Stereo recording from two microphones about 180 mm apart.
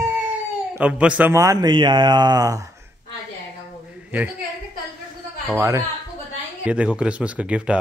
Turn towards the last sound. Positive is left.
turn(degrees=-5)  # may be behind; listen again after turning